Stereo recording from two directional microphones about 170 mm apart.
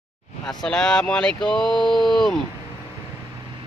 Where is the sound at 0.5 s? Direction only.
5° left (ahead or behind).